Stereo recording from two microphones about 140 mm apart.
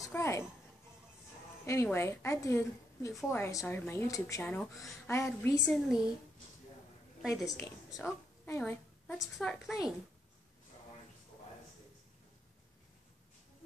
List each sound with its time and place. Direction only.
0.1 s a sound: 20° left (ahead or behind)
1.7 s a woman's voice: 20° left (ahead or behind)
4.5 s a woman's voice: centre (ahead or behind)
5.0 s a woman's voice: 15° left (ahead or behind)
5.7 s a woman's voice: centre (ahead or behind)
7.2 s a woman's voice: centre (ahead or behind)
8.0 s a woman's voice: 15° left (ahead or behind); by 9.9 s 5° right (ahead or behind)